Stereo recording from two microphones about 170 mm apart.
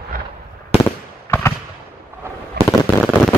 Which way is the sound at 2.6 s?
70° right (ahead or behind).